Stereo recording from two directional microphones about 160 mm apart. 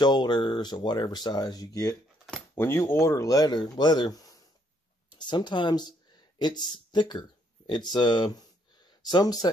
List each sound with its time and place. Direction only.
0.0 s speech: 25° left (ahead or behind)